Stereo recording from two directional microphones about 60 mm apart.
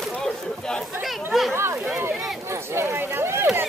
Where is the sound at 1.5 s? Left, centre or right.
Right.